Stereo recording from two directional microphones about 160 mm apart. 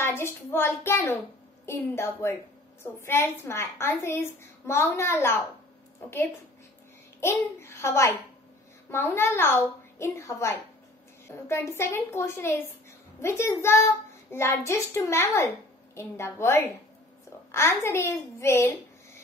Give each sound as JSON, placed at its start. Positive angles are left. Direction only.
{"t": 0.0, "sound": "a child's voice", "side_deg": 15}